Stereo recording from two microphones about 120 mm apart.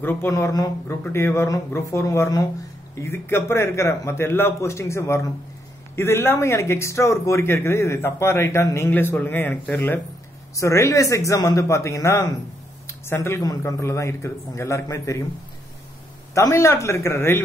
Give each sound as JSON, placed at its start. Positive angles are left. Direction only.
{"t": 0.0, "sound": "speech", "side_deg": 15}
{"t": 0.3, "sound": "a man's voice", "side_deg": 30}
{"t": 16.3, "sound": "a man's voice", "side_deg": 25}